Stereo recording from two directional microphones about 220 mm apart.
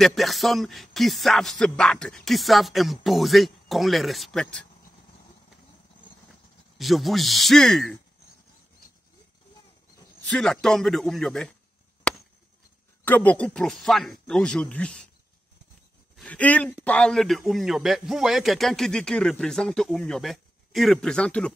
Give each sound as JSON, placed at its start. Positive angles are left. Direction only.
{"t": 0.0, "sound": "a man's voice", "side_deg": 0}
{"t": 6.8, "sound": "a man's voice", "side_deg": 0}
{"t": 10.2, "sound": "a man's voice", "side_deg": 0}
{"t": 12.1, "sound": "chop", "side_deg": 5}
{"t": 13.0, "sound": "a man's voice", "side_deg": 5}
{"t": 16.2, "sound": "a man's voice", "side_deg": 5}